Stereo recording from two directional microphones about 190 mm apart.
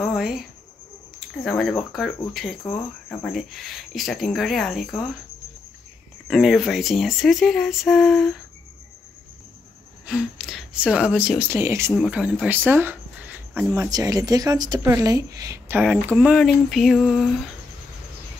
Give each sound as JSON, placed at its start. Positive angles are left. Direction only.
{"t": 0.0, "sound": "a sound", "side_deg": 0}
{"t": 1.4, "sound": "speech", "side_deg": 0}
{"t": 6.2, "sound": "speech", "side_deg": 0}
{"t": 10.0, "sound": "speech", "side_deg": -5}
{"t": 13.7, "sound": "speech", "side_deg": -20}
{"t": 16.1, "sound": "speech", "side_deg": 0}